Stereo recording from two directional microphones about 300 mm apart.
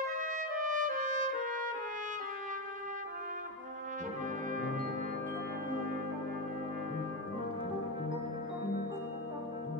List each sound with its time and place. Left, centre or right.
0.0 s trumpet: right